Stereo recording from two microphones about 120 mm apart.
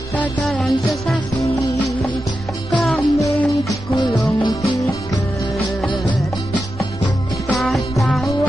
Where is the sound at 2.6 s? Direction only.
Centre (ahead or behind).